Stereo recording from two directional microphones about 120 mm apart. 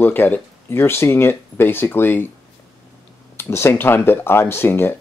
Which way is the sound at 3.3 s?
20° left (ahead or behind).